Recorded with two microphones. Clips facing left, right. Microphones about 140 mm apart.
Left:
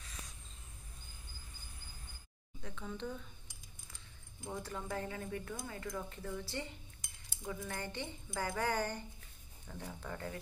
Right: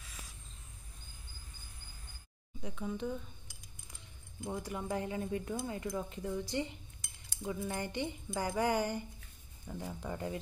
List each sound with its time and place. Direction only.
2.6 s a woman's voice: 15° right (ahead or behind)
4.4 s a woman's voice: 15° right (ahead or behind)